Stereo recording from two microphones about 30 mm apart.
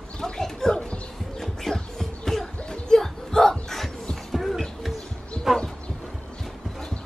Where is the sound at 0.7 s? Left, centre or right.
Left.